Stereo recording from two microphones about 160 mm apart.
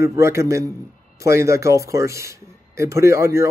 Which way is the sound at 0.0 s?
15° right (ahead or behind).